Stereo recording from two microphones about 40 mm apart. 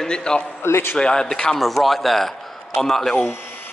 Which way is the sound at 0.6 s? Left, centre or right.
Left.